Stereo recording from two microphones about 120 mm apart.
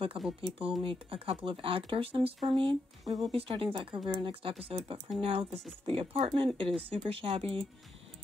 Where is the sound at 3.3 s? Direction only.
50° right (ahead or behind).